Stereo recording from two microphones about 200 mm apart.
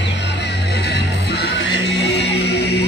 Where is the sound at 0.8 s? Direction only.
55° left (ahead or behind).